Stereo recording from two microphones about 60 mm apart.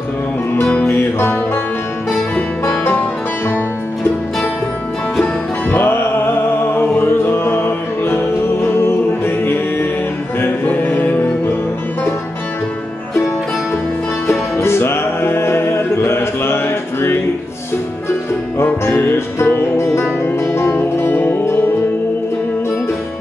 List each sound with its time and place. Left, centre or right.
0.8 s music: left
5.2 s music: left
14.6 s music: left
18.6 s music: left
19.4 s music: left
20.6 s music: left
21.1 s music: left